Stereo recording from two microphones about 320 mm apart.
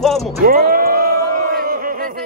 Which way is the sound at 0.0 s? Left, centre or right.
Centre.